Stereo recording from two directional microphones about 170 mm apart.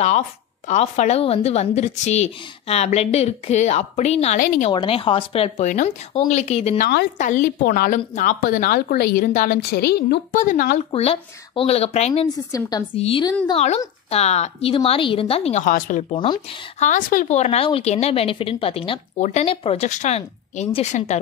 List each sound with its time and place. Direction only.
0.7 s a woman's voice: 45° left (ahead or behind)
4.7 s a woman's voice: 30° left (ahead or behind); by 9.6 s 50° left (ahead or behind)
9.6 s a woman's voice: 75° left (ahead or behind)
10.3 s speech: 50° left (ahead or behind)
10.9 s a woman's voice: 35° left (ahead or behind)
12.1 s a woman's voice: 25° left (ahead or behind)
12.9 s a woman's voice: 35° left (ahead or behind)
15.6 s speech: 50° left (ahead or behind)
16.1 s a woman's voice: 30° left (ahead or behind)
16.8 s a woman's voice: 50° left (ahead or behind)